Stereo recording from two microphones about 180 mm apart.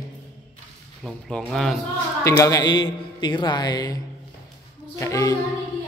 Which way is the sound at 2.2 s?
20° left (ahead or behind).